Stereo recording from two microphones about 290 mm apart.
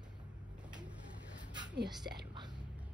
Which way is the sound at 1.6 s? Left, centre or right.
Right.